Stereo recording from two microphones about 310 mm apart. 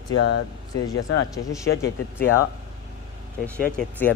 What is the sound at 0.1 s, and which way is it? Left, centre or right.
Speech, left.